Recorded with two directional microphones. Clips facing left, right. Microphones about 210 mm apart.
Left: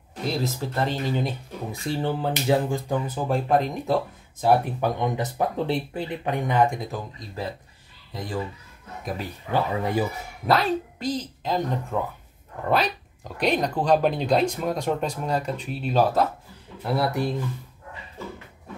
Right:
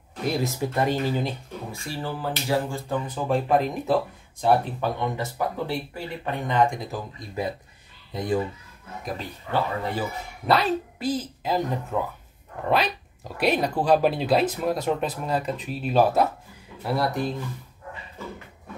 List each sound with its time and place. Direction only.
0.4 s speech: 10° right (ahead or behind)
1.7 s speech: 20° left (ahead or behind); by 4.5 s centre (ahead or behind)
4.5 s speech: 15° left (ahead or behind)
7.2 s speech: 15° right (ahead or behind)
9.0 s speech: 10° left (ahead or behind)
10.4 s speech: centre (ahead or behind)
16.8 s speech: centre (ahead or behind)